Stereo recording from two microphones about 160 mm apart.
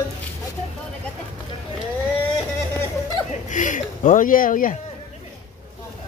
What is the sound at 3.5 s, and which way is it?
Speech, 50° left (ahead or behind).